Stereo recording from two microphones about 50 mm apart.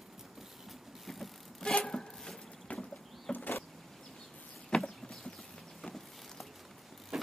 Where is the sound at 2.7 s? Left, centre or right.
Left.